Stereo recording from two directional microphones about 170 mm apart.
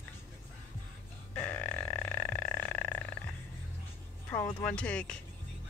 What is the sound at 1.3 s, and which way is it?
Frog, 10° left (ahead or behind).